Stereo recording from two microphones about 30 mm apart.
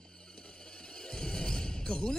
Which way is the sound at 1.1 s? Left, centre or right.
Left.